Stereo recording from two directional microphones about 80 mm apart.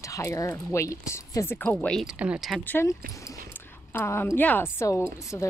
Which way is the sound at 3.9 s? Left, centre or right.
Left.